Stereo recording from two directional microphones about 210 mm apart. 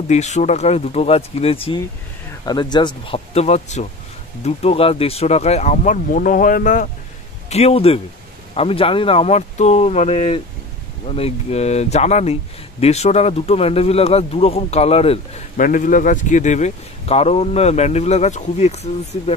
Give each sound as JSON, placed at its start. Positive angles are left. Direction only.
{"t": 0.1, "sound": "speech", "side_deg": 35}